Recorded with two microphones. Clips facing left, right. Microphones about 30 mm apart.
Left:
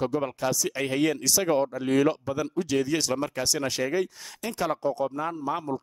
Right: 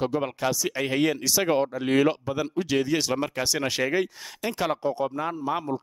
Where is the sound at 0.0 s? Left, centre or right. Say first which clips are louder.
Right 1 dB; right.